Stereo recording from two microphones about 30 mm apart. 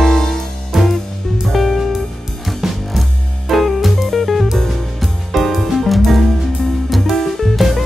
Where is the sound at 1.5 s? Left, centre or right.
Centre.